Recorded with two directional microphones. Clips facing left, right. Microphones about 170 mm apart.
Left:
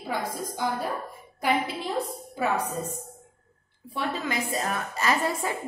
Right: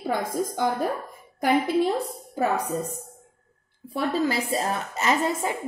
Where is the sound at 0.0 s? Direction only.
50° right (ahead or behind).